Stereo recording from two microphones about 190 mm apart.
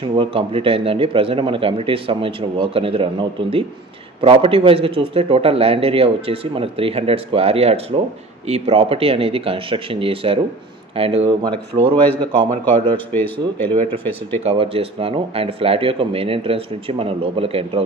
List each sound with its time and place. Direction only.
0.0 s a man's voice: 30° right (ahead or behind)
12.9 s a man's voice: 10° left (ahead or behind)
13.7 s a man's voice: 30° right (ahead or behind)